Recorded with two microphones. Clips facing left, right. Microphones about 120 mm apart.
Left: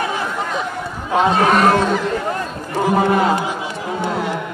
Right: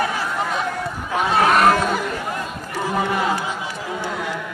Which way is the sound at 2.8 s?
35° left (ahead or behind).